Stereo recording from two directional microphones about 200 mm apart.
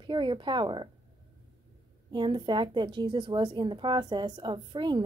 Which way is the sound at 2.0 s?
20° right (ahead or behind).